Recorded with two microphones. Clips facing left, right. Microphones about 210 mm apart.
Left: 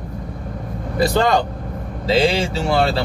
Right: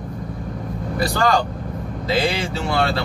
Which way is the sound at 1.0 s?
20° left (ahead or behind).